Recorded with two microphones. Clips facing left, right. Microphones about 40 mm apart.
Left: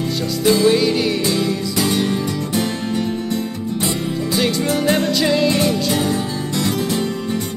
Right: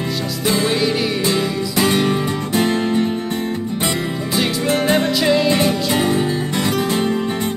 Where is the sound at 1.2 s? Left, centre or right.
Right.